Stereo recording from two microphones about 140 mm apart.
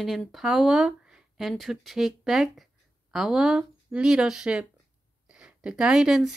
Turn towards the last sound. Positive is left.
turn(degrees=0)  # may be behind; listen again after turning